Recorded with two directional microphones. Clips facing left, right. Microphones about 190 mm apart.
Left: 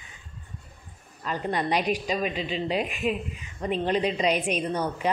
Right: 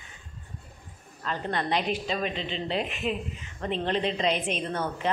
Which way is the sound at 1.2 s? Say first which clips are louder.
Left 2 dB; 15° left (ahead or behind).